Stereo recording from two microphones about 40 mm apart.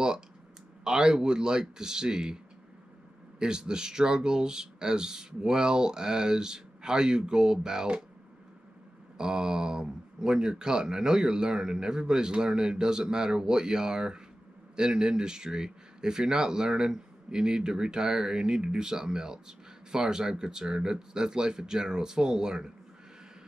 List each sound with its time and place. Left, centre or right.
0.8 s speech: centre
9.2 s speech: centre